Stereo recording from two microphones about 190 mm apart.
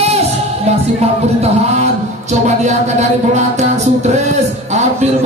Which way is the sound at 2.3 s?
40° right (ahead or behind).